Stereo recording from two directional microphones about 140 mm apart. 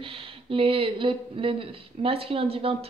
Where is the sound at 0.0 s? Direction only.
40° right (ahead or behind).